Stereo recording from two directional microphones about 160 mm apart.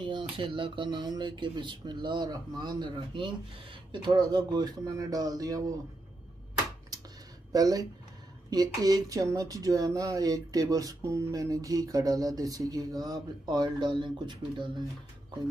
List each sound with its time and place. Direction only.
0.0 s speech: 30° right (ahead or behind)
7.5 s speech: 25° right (ahead or behind)